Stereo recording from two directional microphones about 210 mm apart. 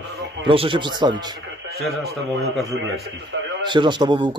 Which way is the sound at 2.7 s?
60° right (ahead or behind).